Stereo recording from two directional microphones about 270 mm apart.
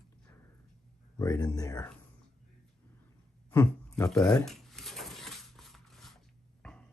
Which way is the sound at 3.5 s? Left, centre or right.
Centre.